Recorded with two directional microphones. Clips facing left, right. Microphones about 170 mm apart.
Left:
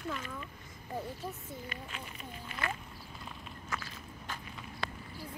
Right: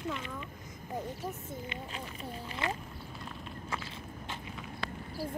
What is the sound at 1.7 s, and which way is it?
Speech, 35° right (ahead or behind).